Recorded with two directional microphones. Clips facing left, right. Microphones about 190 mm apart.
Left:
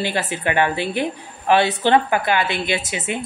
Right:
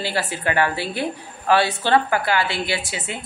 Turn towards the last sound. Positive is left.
turn(degrees=20)  # may be behind; listen again after turning